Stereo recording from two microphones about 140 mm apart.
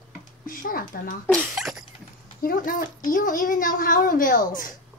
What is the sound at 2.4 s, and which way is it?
A child's voice, 80° left.